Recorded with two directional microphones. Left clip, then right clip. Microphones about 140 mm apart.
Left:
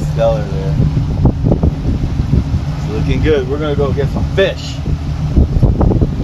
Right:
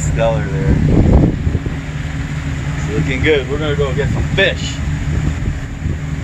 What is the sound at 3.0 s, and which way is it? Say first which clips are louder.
Speech: even; 70° left (ahead or behind).